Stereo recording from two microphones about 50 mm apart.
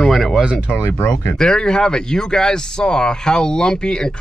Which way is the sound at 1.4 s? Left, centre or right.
Centre.